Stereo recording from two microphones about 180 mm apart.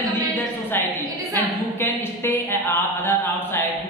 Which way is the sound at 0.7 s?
10° left (ahead or behind).